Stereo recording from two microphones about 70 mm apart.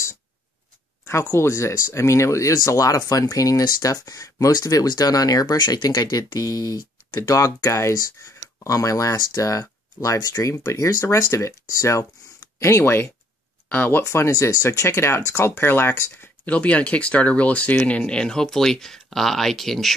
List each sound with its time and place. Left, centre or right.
1.3 s speech: left
14.0 s speech: left
16.4 s speech: centre